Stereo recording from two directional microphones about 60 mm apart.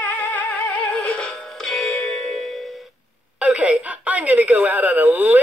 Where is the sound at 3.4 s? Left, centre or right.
Right.